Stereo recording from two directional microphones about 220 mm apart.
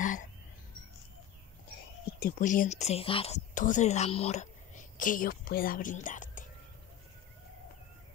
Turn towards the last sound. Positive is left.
turn(degrees=35)  # may be behind; listen again after turning